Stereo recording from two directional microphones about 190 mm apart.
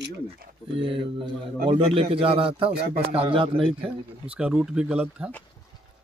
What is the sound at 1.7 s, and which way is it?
Speech, 30° right (ahead or behind).